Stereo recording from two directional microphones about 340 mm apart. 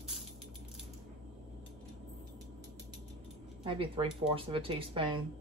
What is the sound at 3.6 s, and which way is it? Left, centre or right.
Speech, centre.